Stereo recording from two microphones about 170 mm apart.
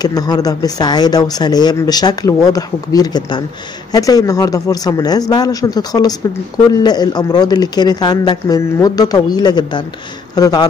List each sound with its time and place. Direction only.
0.0 s speech: 25° left (ahead or behind)